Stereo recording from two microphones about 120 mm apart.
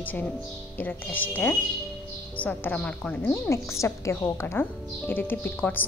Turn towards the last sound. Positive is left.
turn(degrees=15)  # may be behind; listen again after turning